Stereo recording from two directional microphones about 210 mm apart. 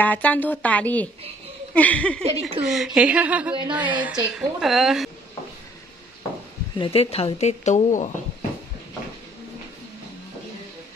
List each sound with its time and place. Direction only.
0.0 s a woman's voice: 5° left (ahead or behind)
6.8 s speech: 30° left (ahead or behind)